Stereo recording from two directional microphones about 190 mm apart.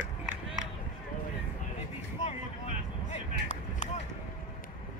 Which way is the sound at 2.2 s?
35° left (ahead or behind).